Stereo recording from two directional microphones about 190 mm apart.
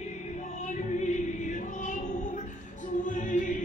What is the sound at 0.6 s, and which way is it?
Choir, 40° left (ahead or behind).